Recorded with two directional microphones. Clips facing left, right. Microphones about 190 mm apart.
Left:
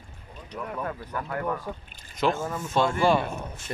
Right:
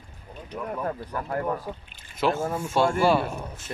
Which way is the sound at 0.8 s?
30° right (ahead or behind).